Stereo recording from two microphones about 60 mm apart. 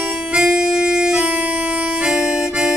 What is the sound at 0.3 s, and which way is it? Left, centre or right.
Harmonica, centre.